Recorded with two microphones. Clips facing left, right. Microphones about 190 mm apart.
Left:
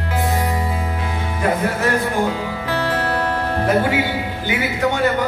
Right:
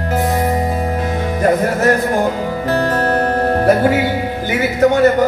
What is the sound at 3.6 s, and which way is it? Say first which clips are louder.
Music: right 4 dB; 40° right (ahead or behind).